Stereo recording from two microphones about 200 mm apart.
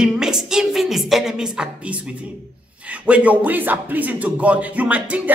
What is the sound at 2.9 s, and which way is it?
Music, 5° right (ahead or behind).